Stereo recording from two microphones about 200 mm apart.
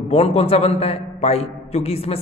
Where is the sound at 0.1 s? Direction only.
30° left (ahead or behind).